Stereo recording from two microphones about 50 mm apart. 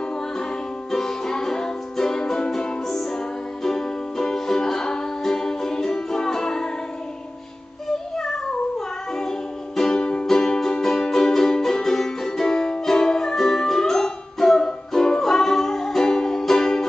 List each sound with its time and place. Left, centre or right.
0.9 s music: centre
8.2 s meow: centre
9.8 s music: centre